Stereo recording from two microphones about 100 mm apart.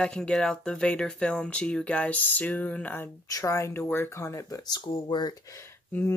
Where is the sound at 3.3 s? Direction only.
30° left (ahead or behind).